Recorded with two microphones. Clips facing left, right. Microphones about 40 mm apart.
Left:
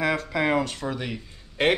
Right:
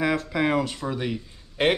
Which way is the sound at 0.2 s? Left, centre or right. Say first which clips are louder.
Even; centre.